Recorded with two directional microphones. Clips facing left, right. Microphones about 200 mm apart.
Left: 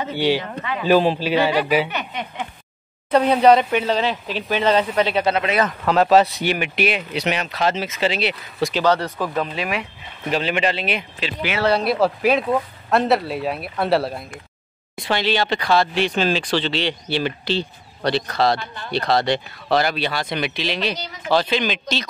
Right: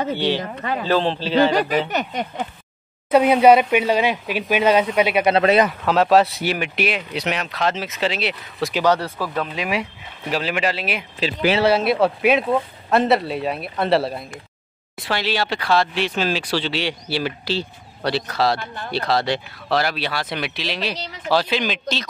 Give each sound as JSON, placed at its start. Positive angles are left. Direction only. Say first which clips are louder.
{"t": 0.1, "sound": "a man's voice", "louder": "left 1 dB", "side_deg": 10}
{"t": 1.9, "sound": "speech", "louder": "right 4 dB", "side_deg": -40}
{"t": 3.1, "sound": "speech", "louder": "right 1 dB", "side_deg": -10}
{"t": 5.3, "sound": "speech", "louder": "right 5 dB", "side_deg": -35}
{"t": 5.7, "sound": "speech", "louder": "left 1 dB", "side_deg": 0}
{"t": 8.7, "sound": "speech", "louder": "right 1 dB", "side_deg": -10}
{"t": 9.2, "sound": "a man's voice", "louder": "left 2 dB", "side_deg": 10}
{"t": 9.5, "sound": "speech", "louder": "right 1 dB", "side_deg": -10}
{"t": 11.1, "sound": "speech", "louder": "right 6 dB", "side_deg": -35}
{"t": 11.6, "sound": "speech", "louder": "left 1 dB", "side_deg": -5}